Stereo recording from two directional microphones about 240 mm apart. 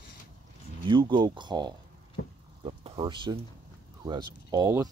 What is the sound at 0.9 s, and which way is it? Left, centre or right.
Speech, centre.